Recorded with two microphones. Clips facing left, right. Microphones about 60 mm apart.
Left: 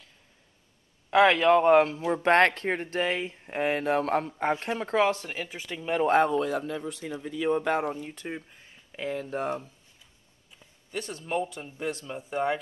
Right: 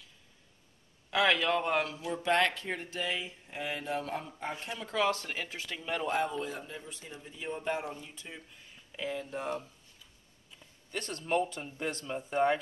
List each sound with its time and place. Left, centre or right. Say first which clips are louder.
1.1 s speech: left 8 dB; left
4.9 s speech: left 5 dB; left
5.3 s speech: left 3 dB; centre
5.6 s speech: left 10 dB; centre
6.0 s speech: left 10 dB; left
8.0 s speech: left 10 dB; left
10.6 s speech: left 4 dB; centre